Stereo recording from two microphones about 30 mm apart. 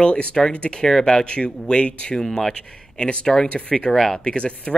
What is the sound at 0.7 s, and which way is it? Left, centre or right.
Speech, left.